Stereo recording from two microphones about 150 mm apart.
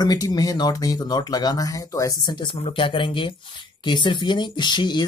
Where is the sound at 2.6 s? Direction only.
35° left (ahead or behind).